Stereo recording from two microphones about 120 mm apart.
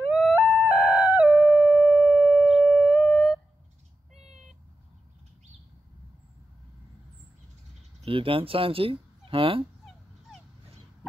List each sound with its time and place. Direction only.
0.1 s howl: 5° right (ahead or behind)
8.0 s speech: 50° right (ahead or behind)